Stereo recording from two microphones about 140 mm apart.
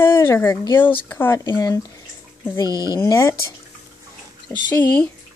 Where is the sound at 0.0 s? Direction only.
15° left (ahead or behind).